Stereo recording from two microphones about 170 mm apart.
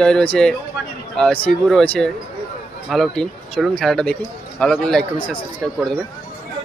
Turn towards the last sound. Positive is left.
turn(degrees=5)  # may be behind; listen again after turning